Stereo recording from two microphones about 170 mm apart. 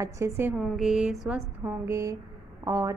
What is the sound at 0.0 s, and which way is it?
Speech, 15° right (ahead or behind).